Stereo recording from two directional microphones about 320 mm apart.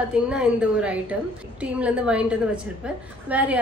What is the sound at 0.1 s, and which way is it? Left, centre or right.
A woman's voice, centre.